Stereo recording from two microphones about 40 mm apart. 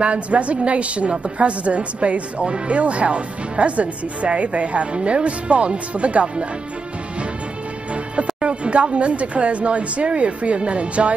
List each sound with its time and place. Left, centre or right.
0.0 s a woman's voice: right
8.4 s a woman's voice: right